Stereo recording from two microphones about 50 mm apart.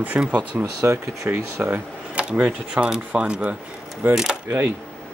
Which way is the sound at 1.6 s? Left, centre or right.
Right.